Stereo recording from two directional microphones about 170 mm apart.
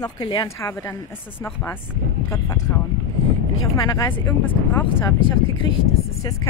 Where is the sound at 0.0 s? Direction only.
25° left (ahead or behind).